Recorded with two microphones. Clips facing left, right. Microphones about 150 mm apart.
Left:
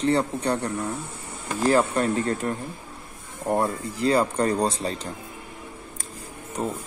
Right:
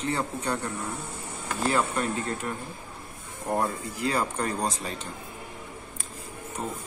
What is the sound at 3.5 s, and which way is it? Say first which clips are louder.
Speech: left 2 dB; 35° left (ahead or behind).